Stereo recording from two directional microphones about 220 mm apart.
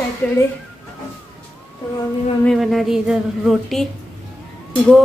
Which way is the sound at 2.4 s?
Centre (ahead or behind).